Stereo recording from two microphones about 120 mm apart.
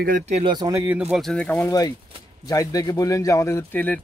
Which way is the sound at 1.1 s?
5° left (ahead or behind).